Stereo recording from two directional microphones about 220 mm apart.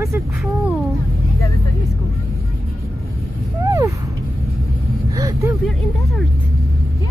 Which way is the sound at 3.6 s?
15° right (ahead or behind).